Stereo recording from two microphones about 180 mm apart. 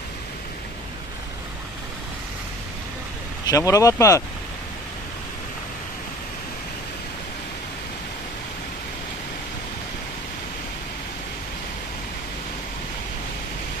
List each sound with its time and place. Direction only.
3.4 s speech: 20° left (ahead or behind)